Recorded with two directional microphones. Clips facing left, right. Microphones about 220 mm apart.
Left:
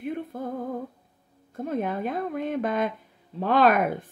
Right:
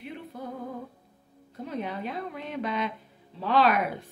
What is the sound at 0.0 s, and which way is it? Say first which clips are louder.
Music: left 8 dB; 50° left (ahead or behind).